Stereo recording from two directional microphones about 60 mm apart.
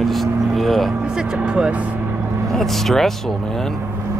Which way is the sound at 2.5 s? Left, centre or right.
Centre.